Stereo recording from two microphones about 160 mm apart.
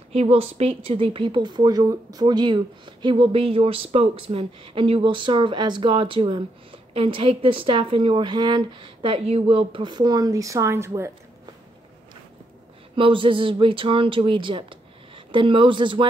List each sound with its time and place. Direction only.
0.1 s speech: 40° right (ahead or behind); by 11.1 s 15° right (ahead or behind)
12.9 s speech: 35° right (ahead or behind)